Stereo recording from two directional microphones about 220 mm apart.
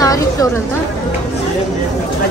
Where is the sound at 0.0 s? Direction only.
15° left (ahead or behind).